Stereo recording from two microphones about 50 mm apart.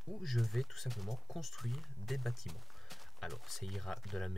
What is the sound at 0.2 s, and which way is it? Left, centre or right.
Speech, centre.